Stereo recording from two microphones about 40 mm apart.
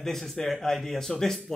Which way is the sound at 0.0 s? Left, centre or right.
Centre.